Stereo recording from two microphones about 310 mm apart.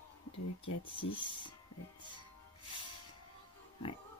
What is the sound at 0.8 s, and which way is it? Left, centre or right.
Speech, centre.